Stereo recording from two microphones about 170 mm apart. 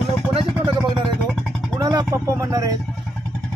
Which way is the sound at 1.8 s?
20° right (ahead or behind).